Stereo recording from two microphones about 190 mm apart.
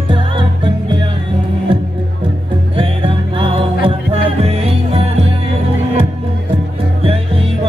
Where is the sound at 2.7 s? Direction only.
30° right (ahead or behind).